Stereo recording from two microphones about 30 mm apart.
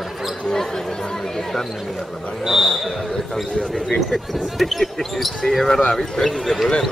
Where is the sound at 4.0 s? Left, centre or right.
Centre.